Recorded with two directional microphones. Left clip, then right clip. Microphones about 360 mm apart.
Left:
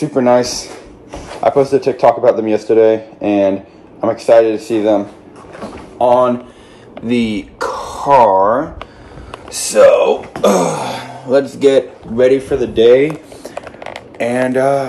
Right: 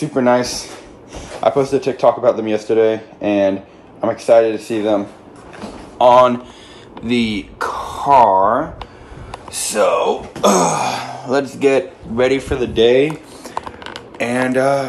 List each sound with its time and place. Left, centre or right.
0.0 s speech: centre
0.7 s a sound: centre
1.9 s speech: centre
7.2 s speech: centre
7.6 s gasp: centre
9.3 s speech: centre
14.1 s speech: centre